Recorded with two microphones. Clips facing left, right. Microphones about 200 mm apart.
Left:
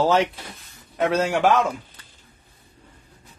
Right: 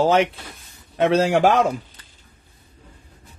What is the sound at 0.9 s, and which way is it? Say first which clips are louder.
Speech: right 4 dB; 30° right (ahead or behind).